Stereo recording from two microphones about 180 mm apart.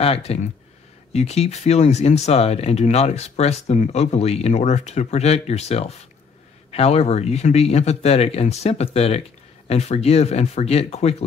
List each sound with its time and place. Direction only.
0.0 s speech: 35° left (ahead or behind)